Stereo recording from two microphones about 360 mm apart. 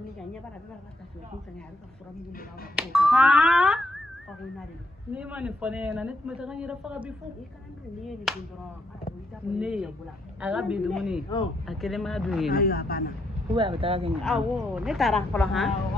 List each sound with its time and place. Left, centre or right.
2.7 s speech: centre
5.1 s speech: centre
8.3 s speech: centre
9.6 s speech: centre
12.4 s speech: left
13.6 s speech: centre
14.2 s speech: centre